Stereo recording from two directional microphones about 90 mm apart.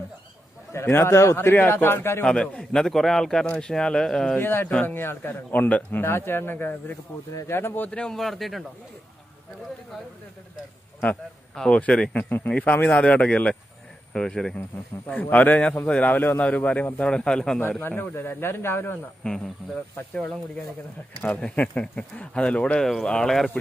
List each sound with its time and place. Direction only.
0.7 s speech: 25° left (ahead or behind)
2.2 s a man's voice: 10° left (ahead or behind)
4.4 s speech: 25° left (ahead or behind)
7.9 s speech: 5° left (ahead or behind)
11.5 s a man's voice: 10° left (ahead or behind)
15.1 s a man's voice: 20° left (ahead or behind)
17.6 s speech: 25° left (ahead or behind)
19.2 s a man's voice: 5° left (ahead or behind)